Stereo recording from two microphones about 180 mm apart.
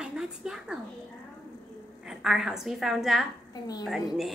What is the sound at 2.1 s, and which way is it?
A woman's voice, centre (ahead or behind).